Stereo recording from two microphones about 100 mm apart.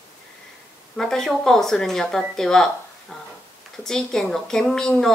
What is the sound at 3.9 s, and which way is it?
A woman's voice, 5° left (ahead or behind).